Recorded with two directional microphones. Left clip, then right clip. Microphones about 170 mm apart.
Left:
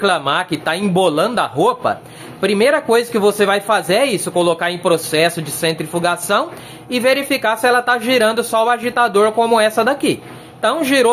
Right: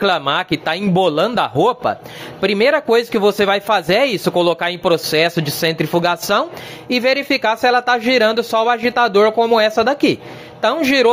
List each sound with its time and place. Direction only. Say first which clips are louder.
0.0 s a man's voice: even; 45° right (ahead or behind)